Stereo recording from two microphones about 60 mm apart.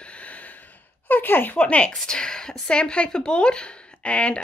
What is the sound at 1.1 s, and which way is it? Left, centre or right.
Speech, left.